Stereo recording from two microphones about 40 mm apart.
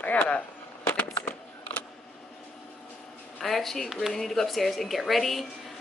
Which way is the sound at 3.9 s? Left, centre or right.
Centre.